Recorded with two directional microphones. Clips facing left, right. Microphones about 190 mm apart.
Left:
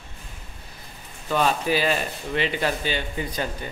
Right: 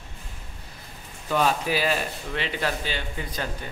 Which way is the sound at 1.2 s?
5° right (ahead or behind).